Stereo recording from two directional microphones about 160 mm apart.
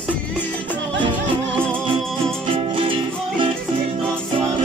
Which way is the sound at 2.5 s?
35° right (ahead or behind).